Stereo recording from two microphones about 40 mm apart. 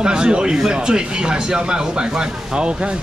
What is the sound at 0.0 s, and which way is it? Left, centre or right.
Speech, right.